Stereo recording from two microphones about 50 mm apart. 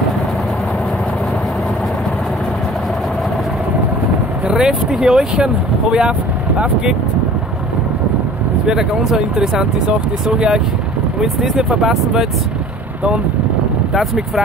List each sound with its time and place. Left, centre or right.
4.5 s vehicle: centre
4.9 s speech: centre
8.6 s speech: centre
13.9 s speech: centre